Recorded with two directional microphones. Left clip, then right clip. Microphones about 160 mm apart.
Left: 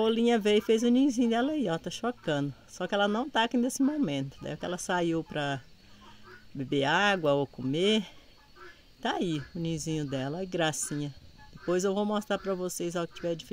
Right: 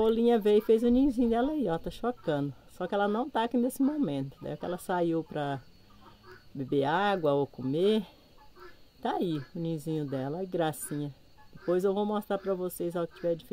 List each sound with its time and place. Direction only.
0.0 s speech: 30° left (ahead or behind)
6.6 s speech: 30° left (ahead or behind)